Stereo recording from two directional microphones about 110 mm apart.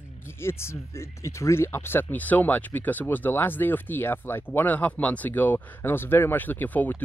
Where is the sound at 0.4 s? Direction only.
20° left (ahead or behind).